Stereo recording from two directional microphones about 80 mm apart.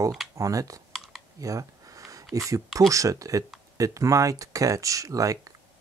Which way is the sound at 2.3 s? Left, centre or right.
Right.